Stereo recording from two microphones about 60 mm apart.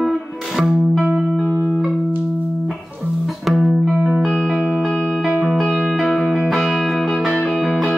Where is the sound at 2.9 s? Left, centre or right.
Centre.